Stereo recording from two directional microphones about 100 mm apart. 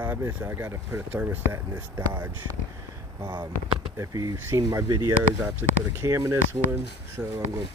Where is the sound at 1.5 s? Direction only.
30° right (ahead or behind).